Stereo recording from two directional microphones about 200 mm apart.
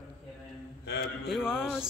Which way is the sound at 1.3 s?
5° right (ahead or behind).